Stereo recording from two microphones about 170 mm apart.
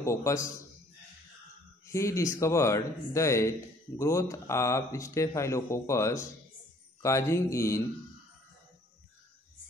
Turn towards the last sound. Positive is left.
turn(degrees=15)  # may be behind; listen again after turning